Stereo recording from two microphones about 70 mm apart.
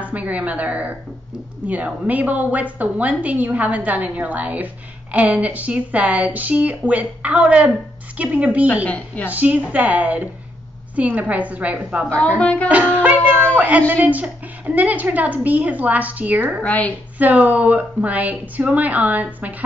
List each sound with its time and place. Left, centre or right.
0.0 s a woman's voice: right
8.8 s a woman's voice: left
9.3 s a woman's voice: right
12.4 s music: centre
12.6 s a woman's voice: right
16.6 s a woman's voice: left
17.2 s a woman's voice: right